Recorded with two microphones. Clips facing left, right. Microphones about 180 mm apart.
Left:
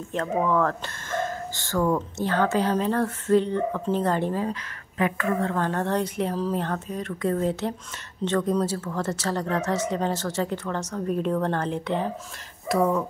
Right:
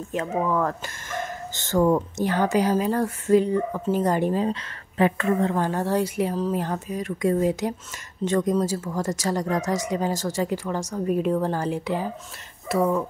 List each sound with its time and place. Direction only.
0.1 s speech: 5° right (ahead or behind)
4.9 s a woman's voice: 30° right (ahead or behind)
5.7 s speech: 5° right (ahead or behind)